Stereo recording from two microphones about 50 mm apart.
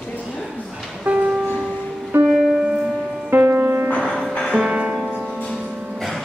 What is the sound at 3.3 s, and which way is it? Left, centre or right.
Music, right.